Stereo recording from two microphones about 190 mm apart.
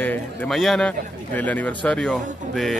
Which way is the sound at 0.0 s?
10° left (ahead or behind).